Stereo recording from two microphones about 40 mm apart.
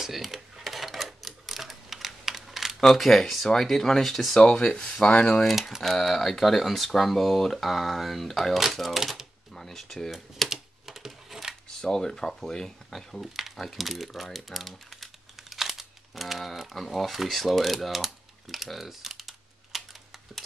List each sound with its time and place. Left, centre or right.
0.0 s typewriter: centre
2.8 s speech: centre
5.0 s speech: left
5.4 s speech: centre
9.5 s a sound: centre
10.5 s typing: centre
11.8 s speech: centre